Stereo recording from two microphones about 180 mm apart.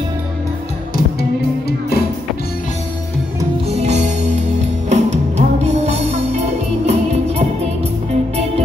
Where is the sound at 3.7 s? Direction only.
40° right (ahead or behind).